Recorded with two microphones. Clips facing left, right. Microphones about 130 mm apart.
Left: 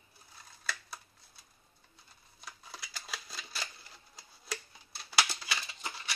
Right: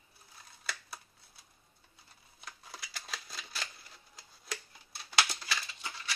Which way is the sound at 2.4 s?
Centre (ahead or behind).